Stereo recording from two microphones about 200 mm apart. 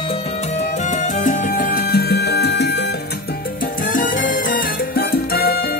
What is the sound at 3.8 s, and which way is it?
Salsa music, 40° left (ahead or behind).